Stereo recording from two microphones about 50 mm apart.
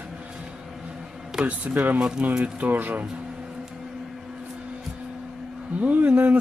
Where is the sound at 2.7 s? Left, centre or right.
Right.